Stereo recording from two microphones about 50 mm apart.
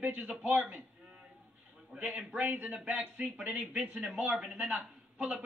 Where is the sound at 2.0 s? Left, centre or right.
Right.